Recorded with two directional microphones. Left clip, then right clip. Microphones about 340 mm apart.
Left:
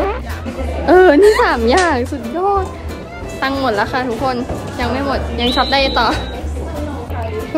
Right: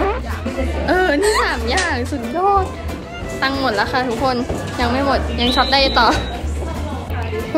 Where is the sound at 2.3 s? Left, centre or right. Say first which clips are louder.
Even; centre.